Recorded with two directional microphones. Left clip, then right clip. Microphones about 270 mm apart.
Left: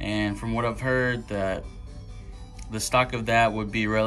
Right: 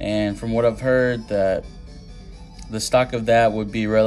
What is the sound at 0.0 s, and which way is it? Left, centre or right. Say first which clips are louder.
Speech: right 5 dB; centre.